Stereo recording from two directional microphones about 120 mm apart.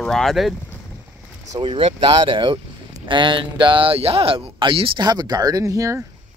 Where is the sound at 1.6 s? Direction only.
45° right (ahead or behind); by 6.0 s 25° right (ahead or behind).